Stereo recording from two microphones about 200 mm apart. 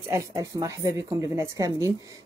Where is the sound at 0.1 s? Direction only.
15° right (ahead or behind).